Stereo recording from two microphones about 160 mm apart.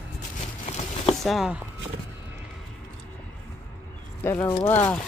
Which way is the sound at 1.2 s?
Centre (ahead or behind).